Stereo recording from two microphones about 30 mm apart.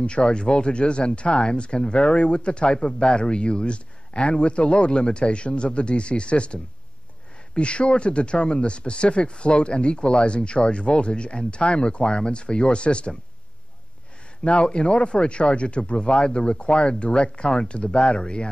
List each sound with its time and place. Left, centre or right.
0.0 s speech: left
14.4 s speech: left